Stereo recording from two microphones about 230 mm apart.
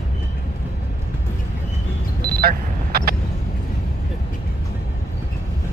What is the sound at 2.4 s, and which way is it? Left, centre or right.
Vehicle, right.